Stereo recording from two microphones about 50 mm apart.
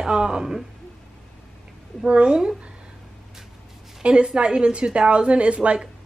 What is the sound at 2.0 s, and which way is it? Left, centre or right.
Speech, right.